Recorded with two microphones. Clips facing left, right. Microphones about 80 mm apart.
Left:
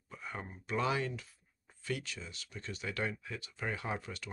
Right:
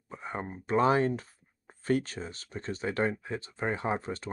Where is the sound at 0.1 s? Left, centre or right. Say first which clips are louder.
Right 7 dB; right.